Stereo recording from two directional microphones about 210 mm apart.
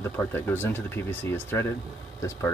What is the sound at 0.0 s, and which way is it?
Speech, 10° left (ahead or behind).